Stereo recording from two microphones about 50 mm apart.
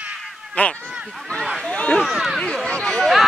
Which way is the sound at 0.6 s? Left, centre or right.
Left.